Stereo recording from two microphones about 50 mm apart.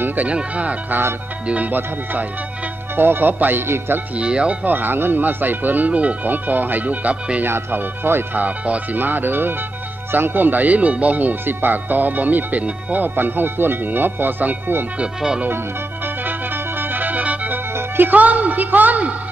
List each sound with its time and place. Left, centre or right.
0.0 s speech: right
3.0 s speech: right
4.2 s speech: right
4.6 s speech: right
7.4 s speech: right
8.5 s speech: right
15.0 s speech: centre
16.3 s music: right
17.7 s speech: right